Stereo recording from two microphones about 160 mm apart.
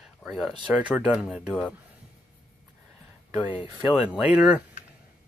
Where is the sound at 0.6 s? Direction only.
5° right (ahead or behind).